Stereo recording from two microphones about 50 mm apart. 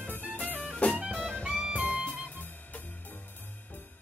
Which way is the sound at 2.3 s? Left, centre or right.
Left.